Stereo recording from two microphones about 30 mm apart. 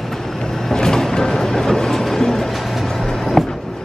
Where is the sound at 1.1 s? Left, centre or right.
Left.